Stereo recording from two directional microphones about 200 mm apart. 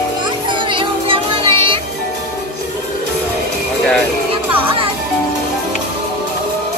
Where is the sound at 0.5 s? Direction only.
25° right (ahead or behind).